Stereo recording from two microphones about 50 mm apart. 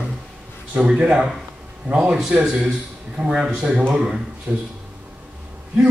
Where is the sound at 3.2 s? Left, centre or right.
Right.